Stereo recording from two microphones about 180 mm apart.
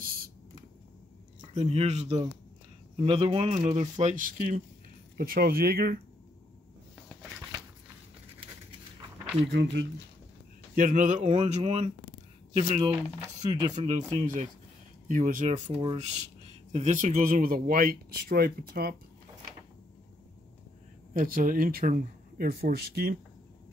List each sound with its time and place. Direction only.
0.0 s a sound: 55° right (ahead or behind)
1.4 s speech: 40° right (ahead or behind); by 5.9 s 60° right (ahead or behind)
9.5 s speech: 75° right (ahead or behind)
10.7 s speech: 50° right (ahead or behind)
13.2 s speech: 20° right (ahead or behind)
13.7 s speech: 40° right (ahead or behind)
16.7 s speech: 45° right (ahead or behind)
21.1 s speech: 50° right (ahead or behind)